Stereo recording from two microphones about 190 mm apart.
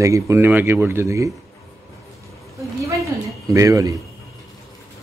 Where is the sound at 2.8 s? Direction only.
15° right (ahead or behind).